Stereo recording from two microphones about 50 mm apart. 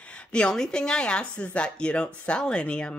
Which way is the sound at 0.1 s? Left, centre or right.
Centre.